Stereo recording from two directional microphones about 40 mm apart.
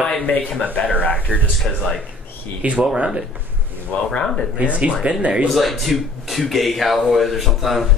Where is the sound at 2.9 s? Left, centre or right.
Right.